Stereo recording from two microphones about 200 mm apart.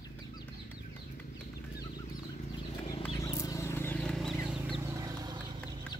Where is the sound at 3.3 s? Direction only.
15° left (ahead or behind); by 4.9 s 5° right (ahead or behind).